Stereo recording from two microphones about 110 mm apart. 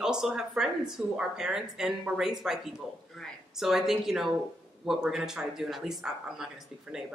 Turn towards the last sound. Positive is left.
turn(degrees=-5)  # may be behind; listen again after turning